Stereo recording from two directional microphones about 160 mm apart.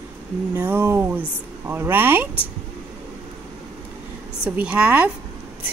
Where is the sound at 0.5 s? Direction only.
15° right (ahead or behind).